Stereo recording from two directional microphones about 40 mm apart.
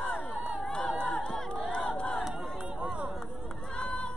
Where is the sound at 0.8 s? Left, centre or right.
Left.